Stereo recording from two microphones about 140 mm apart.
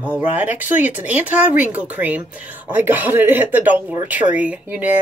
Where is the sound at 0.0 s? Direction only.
10° right (ahead or behind).